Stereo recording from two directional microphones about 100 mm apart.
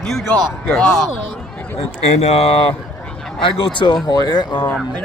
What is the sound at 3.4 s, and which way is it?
Speech, 60° left (ahead or behind).